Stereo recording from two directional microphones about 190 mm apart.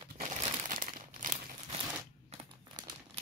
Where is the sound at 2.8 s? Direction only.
20° right (ahead or behind).